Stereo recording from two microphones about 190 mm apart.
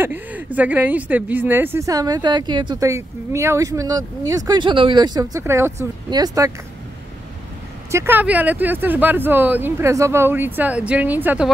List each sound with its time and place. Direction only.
0.0 s speech: 10° right (ahead or behind)
7.9 s speech: 10° right (ahead or behind)